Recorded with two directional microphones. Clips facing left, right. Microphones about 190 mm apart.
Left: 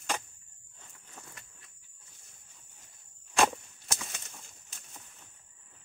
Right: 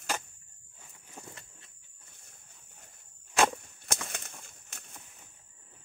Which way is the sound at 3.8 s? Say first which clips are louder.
Right 4 dB; 60° right (ahead or behind).